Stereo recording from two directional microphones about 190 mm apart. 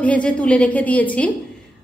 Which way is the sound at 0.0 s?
5° left (ahead or behind).